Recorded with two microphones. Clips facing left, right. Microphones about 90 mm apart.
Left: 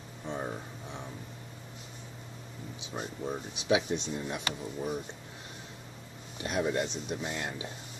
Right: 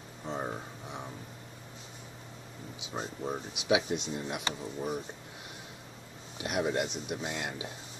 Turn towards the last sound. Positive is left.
turn(degrees=-15)  # may be behind; listen again after turning